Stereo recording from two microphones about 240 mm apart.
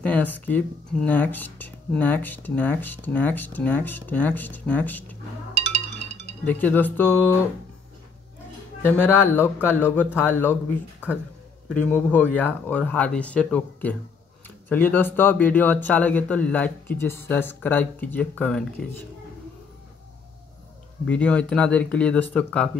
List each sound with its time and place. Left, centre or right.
0.0 s speech: centre
5.9 s music: right
6.4 s speech: centre
8.8 s speech: centre
21.1 s speech: centre